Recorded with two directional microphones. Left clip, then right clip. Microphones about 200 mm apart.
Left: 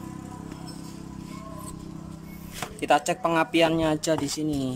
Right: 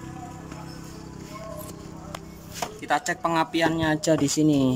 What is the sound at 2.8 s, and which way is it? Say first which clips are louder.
Speech: left 3 dB; 10° left (ahead or behind).